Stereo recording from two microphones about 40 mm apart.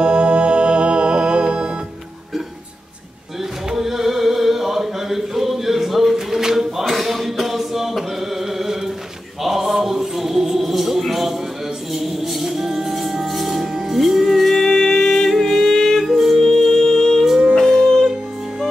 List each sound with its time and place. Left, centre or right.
0.0 s music: right
3.7 s chant: centre
6.1 s a sound: centre
6.8 s chant: centre
9.4 s music: centre
14.7 s music: centre
16.1 s music: centre